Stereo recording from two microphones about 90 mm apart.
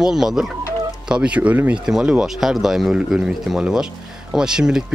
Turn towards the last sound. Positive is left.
turn(degrees=-10)  # may be behind; listen again after turning